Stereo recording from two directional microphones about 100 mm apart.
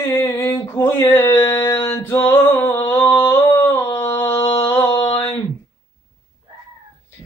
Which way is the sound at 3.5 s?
25° left (ahead or behind).